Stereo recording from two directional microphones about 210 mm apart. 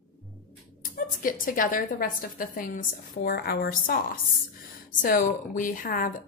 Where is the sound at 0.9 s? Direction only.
40° left (ahead or behind).